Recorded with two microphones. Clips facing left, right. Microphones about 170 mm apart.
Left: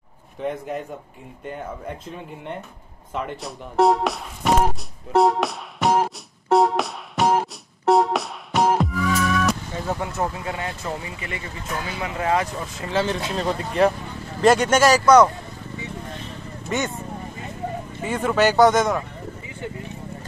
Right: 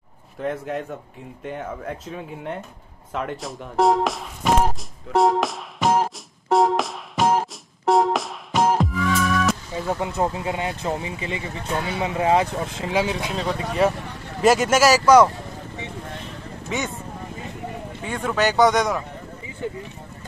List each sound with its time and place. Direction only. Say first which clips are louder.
0.4 s speech: right 1 dB; centre (ahead or behind)
5.1 s music: left 1 dB; centre (ahead or behind)
9.8 s speech: right 2 dB; 15° right (ahead or behind)
12.9 s speech: left 1 dB; 10° right (ahead or behind)
16.6 s speech: left 2 dB; centre (ahead or behind)
18.0 s speech: left 3 dB; centre (ahead or behind)